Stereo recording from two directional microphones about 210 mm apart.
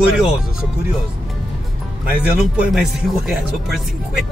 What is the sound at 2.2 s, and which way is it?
Speech, 5° right (ahead or behind).